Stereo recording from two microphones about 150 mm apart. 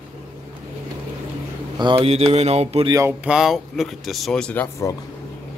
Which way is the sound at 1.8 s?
35° right (ahead or behind).